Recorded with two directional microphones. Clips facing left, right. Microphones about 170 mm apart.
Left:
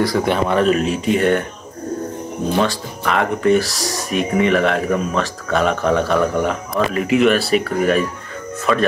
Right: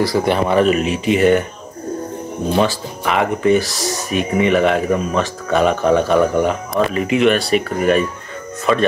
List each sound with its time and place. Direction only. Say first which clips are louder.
0.0 s speech: right 1 dB; centre (ahead or behind)
2.6 s speech: right 2 dB; 5° right (ahead or behind)